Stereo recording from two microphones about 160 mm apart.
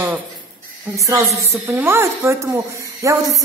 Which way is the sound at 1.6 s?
15° right (ahead or behind).